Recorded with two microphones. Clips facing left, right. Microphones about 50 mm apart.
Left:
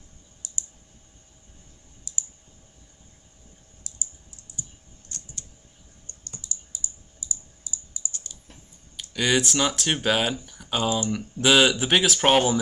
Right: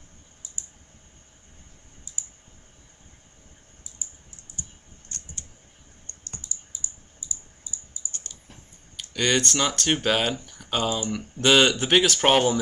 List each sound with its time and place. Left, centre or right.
2.1 s clicking: left
3.9 s typing: left
5.1 s a sound: right
6.1 s computer keyboard: right
6.4 s computer keyboard: left
8.3 s typing: right
8.9 s speech: centre